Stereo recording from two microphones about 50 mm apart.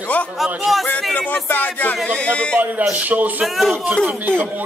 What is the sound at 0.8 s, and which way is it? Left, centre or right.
Speech, left.